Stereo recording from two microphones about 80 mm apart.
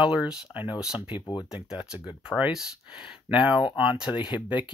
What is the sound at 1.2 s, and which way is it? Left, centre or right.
Speech, left.